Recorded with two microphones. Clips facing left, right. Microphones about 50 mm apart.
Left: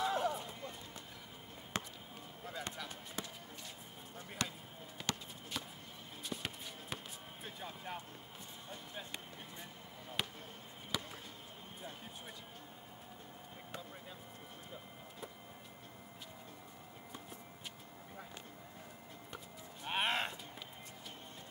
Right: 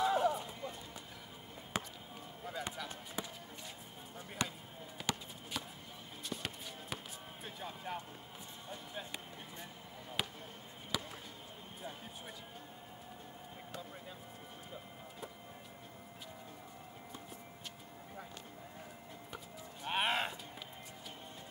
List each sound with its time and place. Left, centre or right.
0.0 s clip-clop: centre
1.7 s a sound: centre
2.4 s basketball bounce: centre
4.4 s basketball bounce: centre
4.9 s a sound: centre
6.2 s basketball bounce: centre
7.4 s vehicle: centre
8.6 s a sound: centre
10.2 s basketball bounce: centre
19.3 s livestock: centre